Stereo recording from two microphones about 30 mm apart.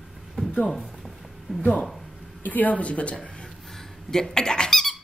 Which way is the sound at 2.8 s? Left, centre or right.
Left.